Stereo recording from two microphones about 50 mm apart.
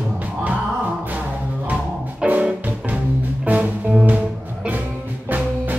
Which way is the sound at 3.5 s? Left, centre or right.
Right.